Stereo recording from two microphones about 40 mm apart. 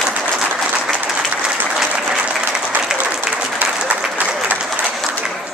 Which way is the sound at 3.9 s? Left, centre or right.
Right.